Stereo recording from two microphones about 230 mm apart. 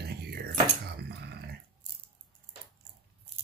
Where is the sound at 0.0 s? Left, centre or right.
Right.